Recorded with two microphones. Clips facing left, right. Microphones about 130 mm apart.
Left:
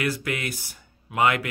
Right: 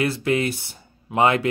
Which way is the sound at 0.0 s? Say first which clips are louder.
Right 6 dB; 30° right (ahead or behind).